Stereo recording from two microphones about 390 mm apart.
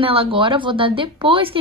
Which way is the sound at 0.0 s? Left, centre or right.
Centre.